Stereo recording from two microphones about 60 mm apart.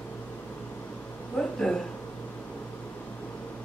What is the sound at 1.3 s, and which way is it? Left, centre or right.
Speech, centre.